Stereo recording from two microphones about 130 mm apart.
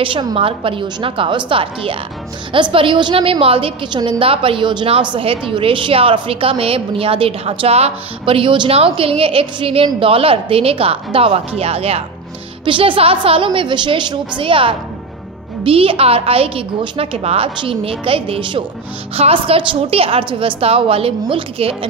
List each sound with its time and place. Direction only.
0.0 s a woman's voice: 40° right (ahead or behind)
12.6 s a woman's voice: 40° right (ahead or behind)